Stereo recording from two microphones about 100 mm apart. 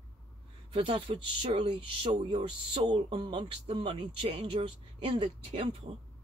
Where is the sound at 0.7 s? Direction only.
65° right (ahead or behind).